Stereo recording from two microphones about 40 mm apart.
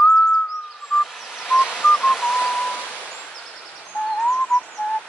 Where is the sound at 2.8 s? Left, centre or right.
Left.